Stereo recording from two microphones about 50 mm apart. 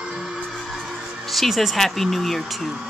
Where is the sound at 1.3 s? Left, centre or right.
Centre.